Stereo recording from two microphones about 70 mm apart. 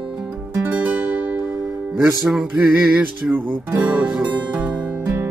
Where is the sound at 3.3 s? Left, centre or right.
Centre.